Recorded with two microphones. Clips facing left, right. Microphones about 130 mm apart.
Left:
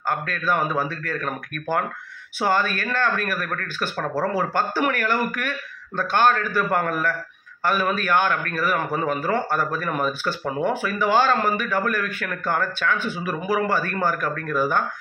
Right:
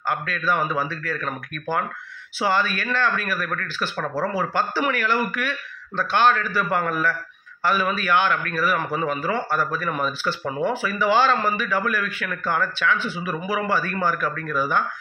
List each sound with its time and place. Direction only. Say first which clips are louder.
0.1 s a man's voice: even; 45° left (ahead or behind)